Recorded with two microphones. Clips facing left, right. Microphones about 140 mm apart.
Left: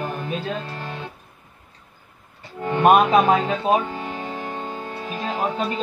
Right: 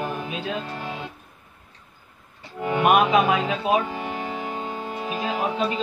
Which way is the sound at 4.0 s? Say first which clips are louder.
Even; 10° right (ahead or behind).